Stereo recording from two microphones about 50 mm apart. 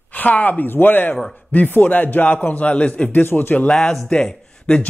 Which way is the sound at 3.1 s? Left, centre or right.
Left.